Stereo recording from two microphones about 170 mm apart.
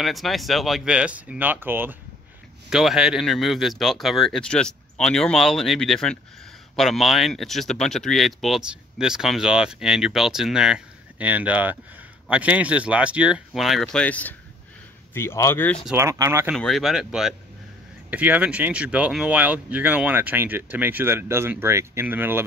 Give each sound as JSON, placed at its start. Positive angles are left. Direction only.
{"t": 0.0, "sound": "speech", "side_deg": 0}
{"t": 15.9, "sound": "speech", "side_deg": -15}
{"t": 16.5, "sound": "speech", "side_deg": 0}